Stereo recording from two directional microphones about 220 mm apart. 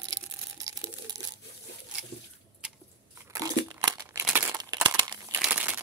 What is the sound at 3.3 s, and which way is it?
Crumpling, 15° right (ahead or behind).